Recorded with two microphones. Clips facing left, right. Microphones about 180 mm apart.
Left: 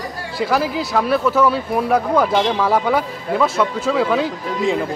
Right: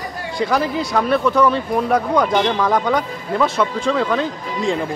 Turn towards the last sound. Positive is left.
turn(degrees=5)  # may be behind; listen again after turning